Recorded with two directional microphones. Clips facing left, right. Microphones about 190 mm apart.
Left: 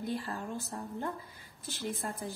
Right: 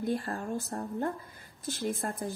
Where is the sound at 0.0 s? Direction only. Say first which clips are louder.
Right 4 dB; 50° right (ahead or behind).